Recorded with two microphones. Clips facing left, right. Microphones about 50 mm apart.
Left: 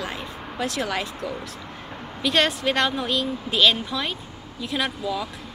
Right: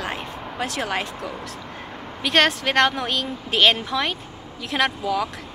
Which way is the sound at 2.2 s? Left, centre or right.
Right.